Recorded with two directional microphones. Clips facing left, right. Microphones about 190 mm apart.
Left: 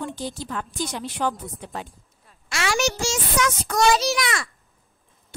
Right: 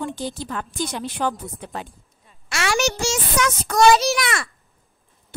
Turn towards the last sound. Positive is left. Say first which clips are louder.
# right 2 dB
turn(degrees=-60)  # may be behind; listen again after turning